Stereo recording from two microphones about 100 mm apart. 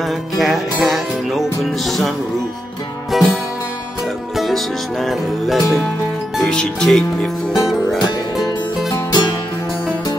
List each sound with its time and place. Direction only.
0.4 s music: centre (ahead or behind)
4.4 s music: centre (ahead or behind)
8.9 s music: 45° left (ahead or behind)